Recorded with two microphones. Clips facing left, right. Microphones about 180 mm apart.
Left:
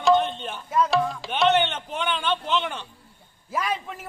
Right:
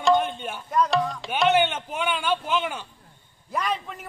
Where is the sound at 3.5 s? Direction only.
5° left (ahead or behind).